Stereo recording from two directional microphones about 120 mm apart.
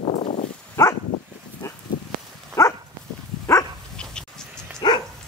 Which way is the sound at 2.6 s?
25° left (ahead or behind).